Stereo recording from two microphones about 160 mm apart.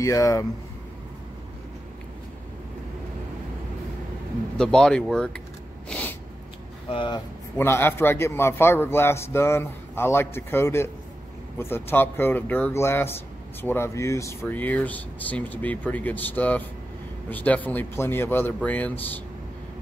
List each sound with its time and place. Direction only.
0.0 s speech: 20° left (ahead or behind)
4.6 s speech: 5° left (ahead or behind)
5.9 s a sound: 10° left (ahead or behind)
6.9 s speech: 30° left (ahead or behind)
7.5 s speech: 15° left (ahead or behind)